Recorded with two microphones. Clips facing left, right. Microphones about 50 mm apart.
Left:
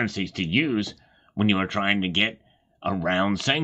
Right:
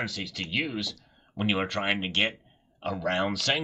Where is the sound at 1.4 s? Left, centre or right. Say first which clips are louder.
Left 5 dB; left.